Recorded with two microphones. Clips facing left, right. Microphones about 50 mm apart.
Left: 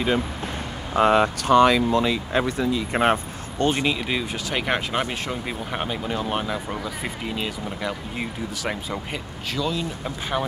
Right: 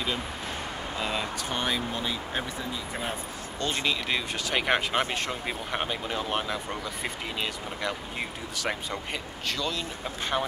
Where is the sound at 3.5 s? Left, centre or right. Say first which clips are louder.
Left 9 dB; left.